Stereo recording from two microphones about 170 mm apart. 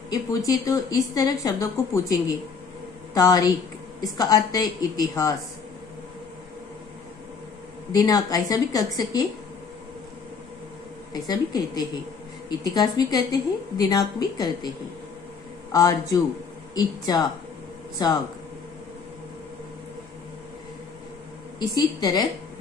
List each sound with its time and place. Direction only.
0.5 s a woman's voice: 20° left (ahead or behind)
7.9 s a woman's voice: 20° left (ahead or behind)
11.2 s a woman's voice: 20° left (ahead or behind)
15.7 s a woman's voice: 20° left (ahead or behind)
21.5 s a woman's voice: 25° left (ahead or behind)